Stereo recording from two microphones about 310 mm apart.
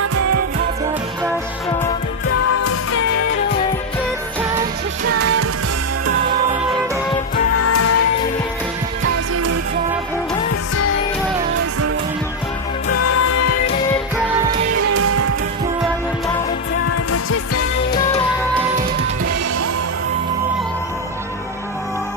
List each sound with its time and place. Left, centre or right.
0.0 s music: right
2.5 s music: left
5.0 s music: right
7.6 s music: left
9.0 s music: right
12.9 s music: left
14.8 s music: right
16.9 s music: left